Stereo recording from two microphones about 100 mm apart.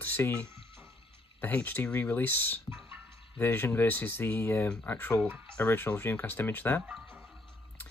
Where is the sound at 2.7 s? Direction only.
25° right (ahead or behind).